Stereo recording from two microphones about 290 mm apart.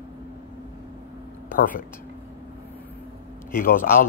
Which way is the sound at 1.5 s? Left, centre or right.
Left.